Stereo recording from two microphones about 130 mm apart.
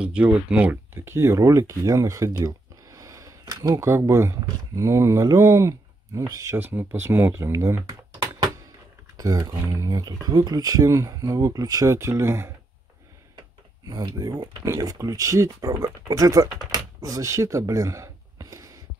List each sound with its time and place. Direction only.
0.0 s speech: 10° right (ahead or behind)
9.1 s speech: 30° right (ahead or behind)
13.4 s speech: 30° right (ahead or behind)